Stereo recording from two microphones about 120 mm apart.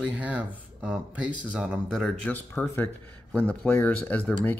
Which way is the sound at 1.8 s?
5° left (ahead or behind).